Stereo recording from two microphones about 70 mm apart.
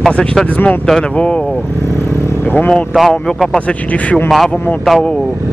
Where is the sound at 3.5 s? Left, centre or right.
Centre.